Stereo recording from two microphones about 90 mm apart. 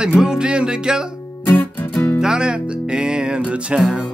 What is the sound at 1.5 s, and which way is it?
Music, 25° left (ahead or behind).